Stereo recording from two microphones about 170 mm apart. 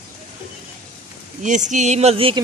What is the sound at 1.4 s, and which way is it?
Speech, 45° right (ahead or behind).